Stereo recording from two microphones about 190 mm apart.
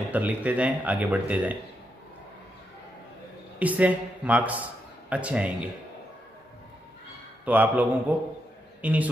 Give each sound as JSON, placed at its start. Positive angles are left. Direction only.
{"t": 0.1, "sound": "speech", "side_deg": -10}
{"t": 3.5, "sound": "speech", "side_deg": -10}
{"t": 7.4, "sound": "speech", "side_deg": -10}